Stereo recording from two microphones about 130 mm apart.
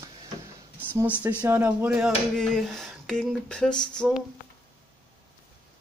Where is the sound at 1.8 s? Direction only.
5° right (ahead or behind).